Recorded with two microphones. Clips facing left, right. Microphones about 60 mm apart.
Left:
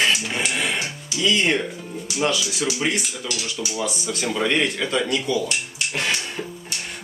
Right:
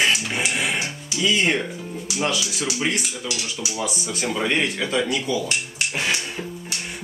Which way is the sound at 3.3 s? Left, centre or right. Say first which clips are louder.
Left 1 dB; centre.